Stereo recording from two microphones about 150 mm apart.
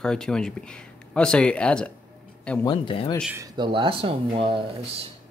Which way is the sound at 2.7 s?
30° left (ahead or behind).